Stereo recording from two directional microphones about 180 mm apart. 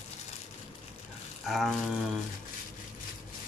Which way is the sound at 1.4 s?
Centre (ahead or behind).